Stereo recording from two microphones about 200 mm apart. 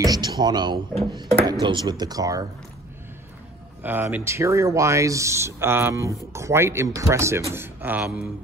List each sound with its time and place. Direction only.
0.0 s speech: 20° right (ahead or behind)
3.8 s speech: 10° right (ahead or behind)